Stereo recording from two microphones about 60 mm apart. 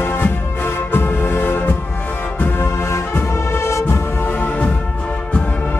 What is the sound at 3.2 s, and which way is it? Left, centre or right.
Music, left.